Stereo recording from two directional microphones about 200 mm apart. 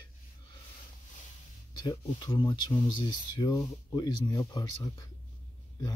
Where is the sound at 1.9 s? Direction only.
20° left (ahead or behind).